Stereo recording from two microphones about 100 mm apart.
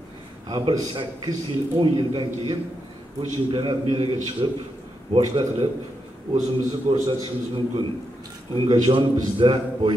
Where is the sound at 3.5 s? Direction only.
55° right (ahead or behind).